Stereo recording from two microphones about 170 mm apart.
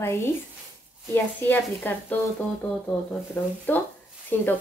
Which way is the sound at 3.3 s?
10° left (ahead or behind).